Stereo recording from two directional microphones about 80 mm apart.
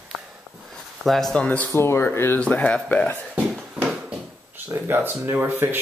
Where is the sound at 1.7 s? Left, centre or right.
Left.